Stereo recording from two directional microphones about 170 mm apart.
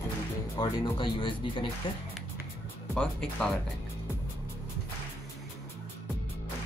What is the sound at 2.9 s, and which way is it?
Speech, 5° left (ahead or behind).